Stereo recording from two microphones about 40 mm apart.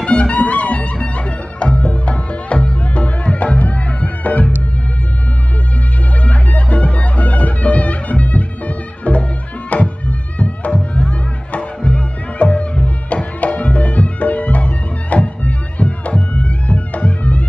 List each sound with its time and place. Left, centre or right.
0.0 s music: left
6.2 s music: left